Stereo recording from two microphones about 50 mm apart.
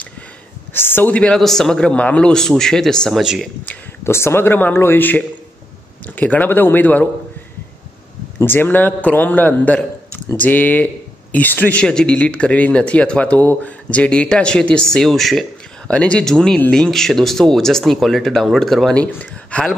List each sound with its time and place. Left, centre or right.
0.7 s speech: left
1.3 s speech: centre
1.9 s speech: left
2.3 s speech: centre
3.2 s speech: centre
4.0 s speech: left
4.7 s a man's voice: left
6.0 s speech: left
8.4 s speech: left
11.8 s speech: centre
15.9 s speech: left
16.3 s speech: centre
19.5 s speech: left